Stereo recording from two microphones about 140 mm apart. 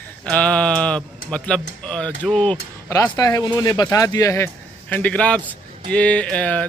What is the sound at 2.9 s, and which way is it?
Speech, 25° left (ahead or behind).